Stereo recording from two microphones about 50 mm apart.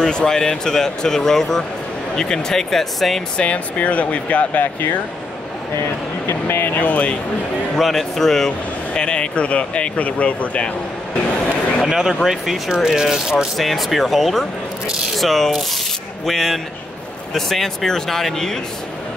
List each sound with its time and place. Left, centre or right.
0.0 s speech: centre
3.3 s speech: left
6.2 s speech: left
6.8 s speech: left
7.8 s speech: centre; by 10.7 s left
11.9 s speech: centre
13.6 s speech: centre